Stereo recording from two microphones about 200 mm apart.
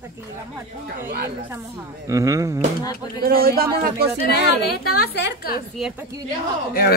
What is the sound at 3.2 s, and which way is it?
Speech, 50° right (ahead or behind).